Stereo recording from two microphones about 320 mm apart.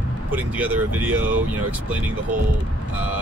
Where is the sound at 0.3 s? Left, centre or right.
Centre.